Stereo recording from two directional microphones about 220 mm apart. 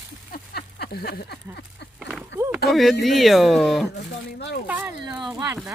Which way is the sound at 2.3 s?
10° right (ahead or behind).